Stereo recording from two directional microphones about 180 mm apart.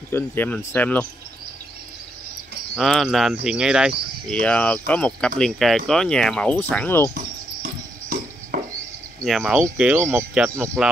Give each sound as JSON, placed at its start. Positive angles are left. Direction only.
{"t": 0.1, "sound": "speech", "side_deg": 10}
{"t": 2.7, "sound": "speech", "side_deg": 0}
{"t": 4.3, "sound": "speech", "side_deg": 5}
{"t": 8.5, "sound": "a sound", "side_deg": -50}
{"t": 9.2, "sound": "speech", "side_deg": 0}